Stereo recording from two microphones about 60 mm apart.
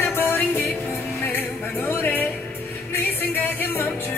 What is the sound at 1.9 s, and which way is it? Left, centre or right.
Music, left.